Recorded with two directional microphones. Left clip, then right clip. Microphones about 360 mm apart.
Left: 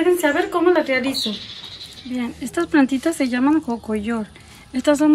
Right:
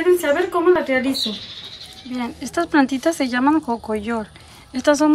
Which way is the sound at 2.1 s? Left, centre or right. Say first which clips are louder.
Right 1 dB; centre.